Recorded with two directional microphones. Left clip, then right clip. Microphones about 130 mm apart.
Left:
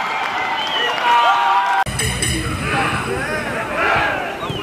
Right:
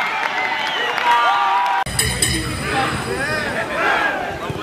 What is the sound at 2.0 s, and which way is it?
Music, 40° right (ahead or behind).